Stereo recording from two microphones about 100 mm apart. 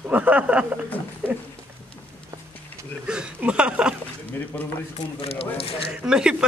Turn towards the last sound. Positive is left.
turn(degrees=-5)  # may be behind; listen again after turning